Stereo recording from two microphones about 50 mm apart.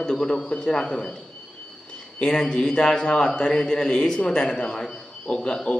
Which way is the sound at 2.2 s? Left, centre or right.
Centre.